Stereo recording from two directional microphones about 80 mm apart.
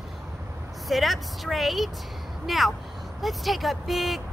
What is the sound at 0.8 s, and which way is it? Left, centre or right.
Speech, centre.